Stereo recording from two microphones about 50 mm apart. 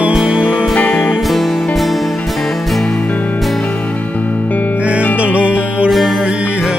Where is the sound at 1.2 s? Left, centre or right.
Centre.